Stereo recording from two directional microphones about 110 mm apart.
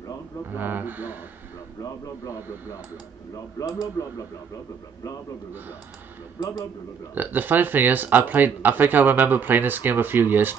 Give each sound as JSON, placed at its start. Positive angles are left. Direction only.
{"t": 0.5, "sound": "speech", "side_deg": -15}
{"t": 1.8, "sound": "speech", "side_deg": 30}
{"t": 7.2, "sound": "speech", "side_deg": -15}